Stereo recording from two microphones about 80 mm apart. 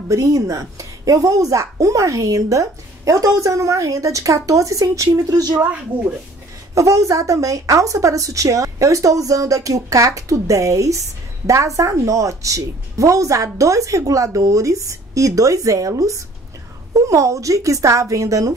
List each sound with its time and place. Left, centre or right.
0.1 s a woman's voice: right
6.7 s a woman's voice: right